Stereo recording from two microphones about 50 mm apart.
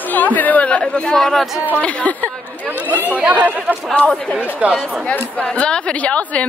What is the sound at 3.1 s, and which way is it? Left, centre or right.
Speech, right.